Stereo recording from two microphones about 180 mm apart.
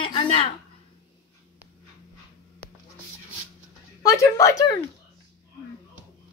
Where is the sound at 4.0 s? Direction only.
20° left (ahead or behind).